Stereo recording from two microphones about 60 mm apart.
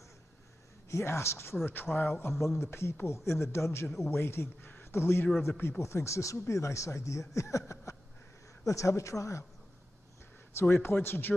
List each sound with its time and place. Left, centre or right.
0.8 s a man's voice: left
1.7 s speech: left
2.4 s a man's voice: left
5.8 s a man's voice: left
10.5 s speech: left